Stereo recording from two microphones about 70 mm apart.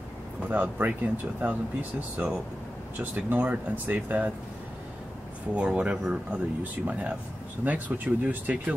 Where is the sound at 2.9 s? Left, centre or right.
Right.